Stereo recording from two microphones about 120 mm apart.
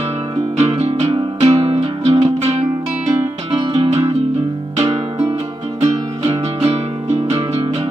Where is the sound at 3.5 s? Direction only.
50° right (ahead or behind).